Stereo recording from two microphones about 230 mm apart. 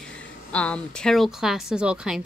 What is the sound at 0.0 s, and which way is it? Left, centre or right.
Speech, centre.